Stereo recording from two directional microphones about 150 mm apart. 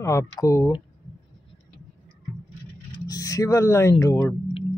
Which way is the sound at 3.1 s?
25° left (ahead or behind).